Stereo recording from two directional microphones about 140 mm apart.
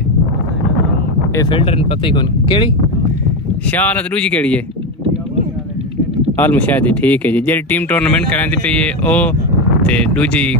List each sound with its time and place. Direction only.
1.5 s speech: 40° left (ahead or behind)
3.7 s speech: 10° left (ahead or behind)
6.3 s speech: 15° left (ahead or behind)